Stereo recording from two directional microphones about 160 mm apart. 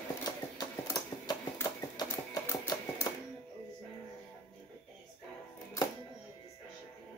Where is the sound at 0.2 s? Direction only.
25° left (ahead or behind).